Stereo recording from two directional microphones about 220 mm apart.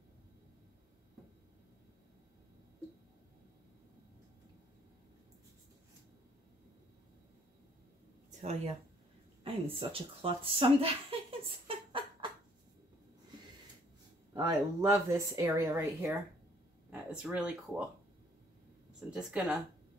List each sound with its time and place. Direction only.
8.3 s speech: 30° right (ahead or behind)
9.4 s a sound: 25° right (ahead or behind)
14.3 s speech: 15° right (ahead or behind)
19.0 s speech: 5° right (ahead or behind)